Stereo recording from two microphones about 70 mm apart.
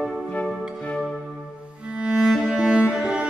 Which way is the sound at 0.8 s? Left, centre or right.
Centre.